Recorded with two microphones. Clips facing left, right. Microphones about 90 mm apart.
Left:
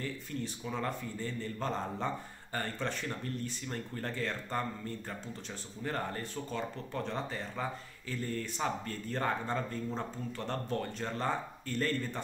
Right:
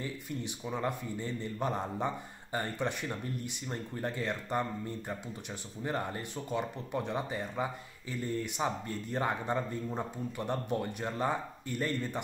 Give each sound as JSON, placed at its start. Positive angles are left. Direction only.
{"t": 0.0, "sound": "a man's voice", "side_deg": -15}